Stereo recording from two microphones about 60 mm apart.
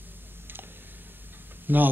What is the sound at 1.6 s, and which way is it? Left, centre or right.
Speech, right.